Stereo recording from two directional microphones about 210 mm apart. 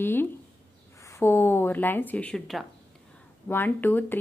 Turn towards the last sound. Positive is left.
turn(degrees=10)  # may be behind; listen again after turning